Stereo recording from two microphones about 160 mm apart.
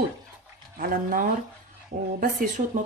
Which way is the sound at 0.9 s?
60° right (ahead or behind).